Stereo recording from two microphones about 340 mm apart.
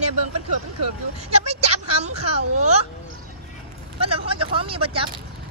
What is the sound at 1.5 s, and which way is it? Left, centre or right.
A woman's voice, centre.